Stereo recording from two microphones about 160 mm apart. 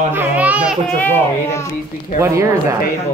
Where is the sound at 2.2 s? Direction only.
20° right (ahead or behind).